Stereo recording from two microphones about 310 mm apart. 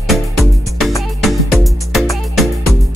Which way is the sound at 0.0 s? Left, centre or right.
Centre.